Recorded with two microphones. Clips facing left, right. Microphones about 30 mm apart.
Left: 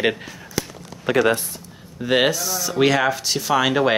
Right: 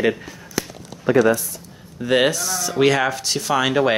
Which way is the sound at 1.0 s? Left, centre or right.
Left.